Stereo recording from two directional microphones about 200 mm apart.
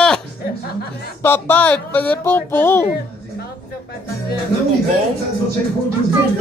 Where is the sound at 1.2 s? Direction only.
10° left (ahead or behind).